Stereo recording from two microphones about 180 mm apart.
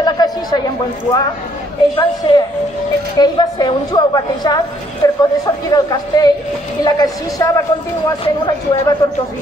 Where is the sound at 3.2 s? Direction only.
25° left (ahead or behind).